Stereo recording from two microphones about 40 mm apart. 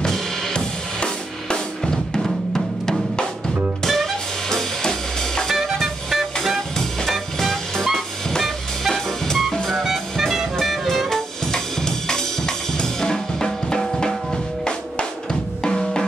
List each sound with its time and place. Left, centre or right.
0.0 s drum kit: centre
3.8 s music: centre
5.5 s music: centre
6.8 s music: centre
8.9 s music: centre
11.1 s music: centre
15.6 s drum: centre